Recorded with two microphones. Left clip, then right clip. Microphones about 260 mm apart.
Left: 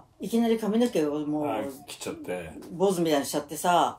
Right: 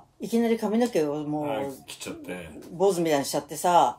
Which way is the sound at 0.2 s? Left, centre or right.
Right.